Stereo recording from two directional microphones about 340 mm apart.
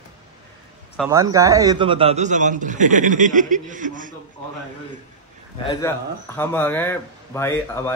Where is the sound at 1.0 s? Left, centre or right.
Centre.